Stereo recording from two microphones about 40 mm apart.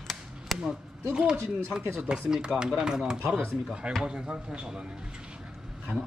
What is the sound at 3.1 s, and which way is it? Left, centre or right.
Speech, right.